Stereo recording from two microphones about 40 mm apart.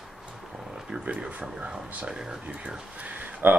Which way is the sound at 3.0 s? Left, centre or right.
Right.